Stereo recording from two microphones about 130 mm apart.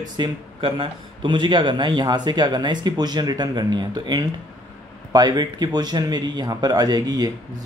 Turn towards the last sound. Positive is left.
turn(degrees=-30)  # may be behind; listen again after turning